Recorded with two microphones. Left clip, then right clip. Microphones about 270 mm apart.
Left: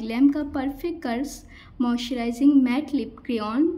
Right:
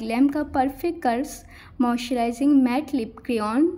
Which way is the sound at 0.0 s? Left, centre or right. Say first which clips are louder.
Even; centre.